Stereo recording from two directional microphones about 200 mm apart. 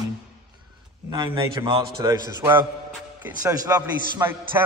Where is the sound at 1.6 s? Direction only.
15° right (ahead or behind).